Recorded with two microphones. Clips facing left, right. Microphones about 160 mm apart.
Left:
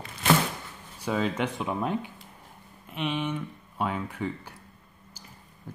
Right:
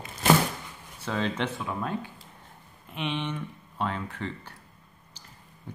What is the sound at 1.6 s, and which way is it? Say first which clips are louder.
Speech: left 3 dB; 20° left (ahead or behind).